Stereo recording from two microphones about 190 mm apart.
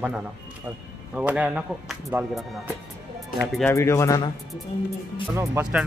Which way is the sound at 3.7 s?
15° left (ahead or behind).